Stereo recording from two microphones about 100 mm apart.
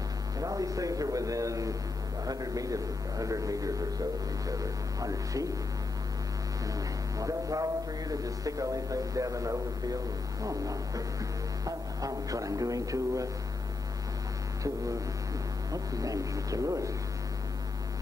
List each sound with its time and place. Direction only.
0.4 s a sound: 35° right (ahead or behind)
2.2 s speech: 35° right (ahead or behind)
5.0 s speech: 35° right (ahead or behind)
6.7 s speech: 35° right (ahead or behind)
15.7 s speech: 35° right (ahead or behind)